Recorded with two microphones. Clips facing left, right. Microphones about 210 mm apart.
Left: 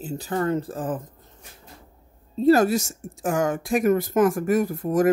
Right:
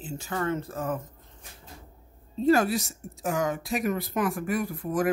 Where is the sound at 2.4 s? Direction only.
40° left (ahead or behind).